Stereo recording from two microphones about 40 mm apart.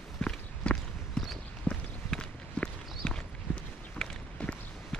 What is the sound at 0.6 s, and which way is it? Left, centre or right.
Clip-clop, left.